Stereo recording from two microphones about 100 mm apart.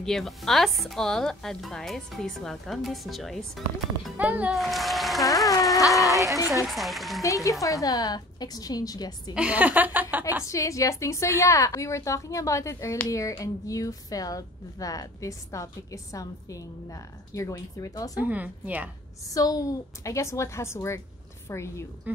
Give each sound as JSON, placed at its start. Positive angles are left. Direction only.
{"t": 0.0, "sound": "speech", "side_deg": 5}
{"t": 4.2, "sound": "a woman's voice", "side_deg": -15}
{"t": 4.6, "sound": "speech", "side_deg": 0}
{"t": 6.1, "sound": "a woman's voice", "side_deg": -30}
{"t": 6.7, "sound": "speech", "side_deg": 0}
{"t": 7.2, "sound": "a woman's voice", "side_deg": 35}
{"t": 9.3, "sound": "a woman's voice", "side_deg": -10}
{"t": 10.4, "sound": "a woman's voice", "side_deg": 30}
{"t": 18.2, "sound": "a woman's voice", "side_deg": -15}
{"t": 19.3, "sound": "a woman's voice", "side_deg": 35}
{"t": 22.1, "sound": "a woman's voice", "side_deg": -20}